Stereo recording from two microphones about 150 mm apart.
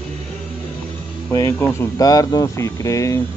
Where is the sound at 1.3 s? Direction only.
20° left (ahead or behind).